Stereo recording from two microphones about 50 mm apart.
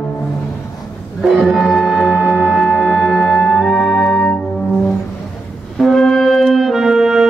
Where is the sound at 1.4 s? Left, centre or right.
Centre.